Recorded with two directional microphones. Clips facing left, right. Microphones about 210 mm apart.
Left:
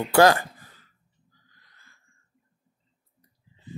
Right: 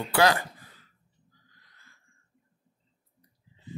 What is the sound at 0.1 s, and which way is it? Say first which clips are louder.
Speech: left 6 dB; 45° left (ahead or behind).